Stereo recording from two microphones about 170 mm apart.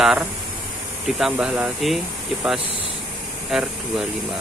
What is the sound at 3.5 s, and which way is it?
Speech, centre (ahead or behind).